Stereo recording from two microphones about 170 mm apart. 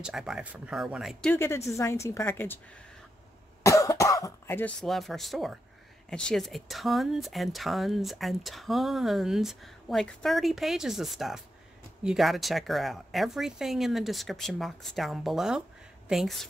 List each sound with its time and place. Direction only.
0.0 s speech: 5° right (ahead or behind)
1.3 s a woman's voice: 15° left (ahead or behind)
3.6 s cough: 20° left (ahead or behind)
4.8 s speech: centre (ahead or behind)